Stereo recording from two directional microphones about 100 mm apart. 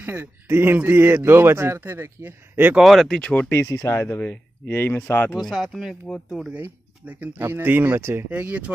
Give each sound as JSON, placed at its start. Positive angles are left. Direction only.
{"t": 0.0, "sound": "speech", "side_deg": -20}
{"t": 2.8, "sound": "speech", "side_deg": 0}
{"t": 3.2, "sound": "speech", "side_deg": 10}
{"t": 3.4, "sound": "speech", "side_deg": 25}
{"t": 5.3, "sound": "speech", "side_deg": 0}
{"t": 6.0, "sound": "speech", "side_deg": 10}
{"t": 6.5, "sound": "speech", "side_deg": -15}
{"t": 8.3, "sound": "speech", "side_deg": -15}